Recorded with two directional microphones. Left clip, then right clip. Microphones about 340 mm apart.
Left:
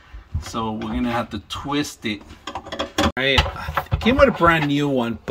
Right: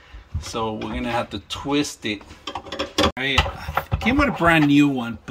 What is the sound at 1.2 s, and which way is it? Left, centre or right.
Speech, centre.